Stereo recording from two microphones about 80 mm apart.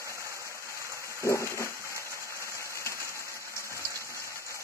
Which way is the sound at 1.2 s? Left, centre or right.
Left.